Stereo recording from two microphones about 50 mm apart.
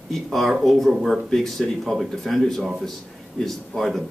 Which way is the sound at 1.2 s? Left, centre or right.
Centre.